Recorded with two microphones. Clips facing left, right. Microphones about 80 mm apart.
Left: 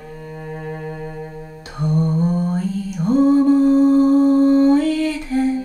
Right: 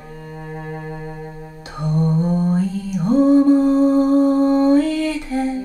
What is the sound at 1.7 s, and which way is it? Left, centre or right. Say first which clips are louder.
Mantra: even; right.